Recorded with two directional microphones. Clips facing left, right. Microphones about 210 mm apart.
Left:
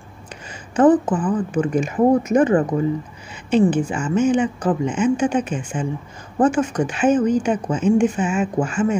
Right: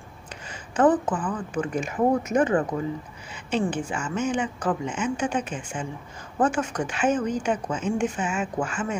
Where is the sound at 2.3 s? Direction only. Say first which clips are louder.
Left 6 dB; 30° left (ahead or behind).